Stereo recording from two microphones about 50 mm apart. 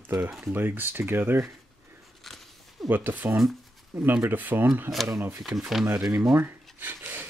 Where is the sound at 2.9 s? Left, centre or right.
Right.